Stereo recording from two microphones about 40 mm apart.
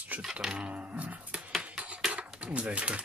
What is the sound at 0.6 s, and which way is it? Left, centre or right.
Speech, right.